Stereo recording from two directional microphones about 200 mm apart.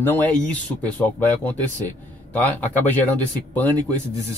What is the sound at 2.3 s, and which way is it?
Speech, 10° left (ahead or behind).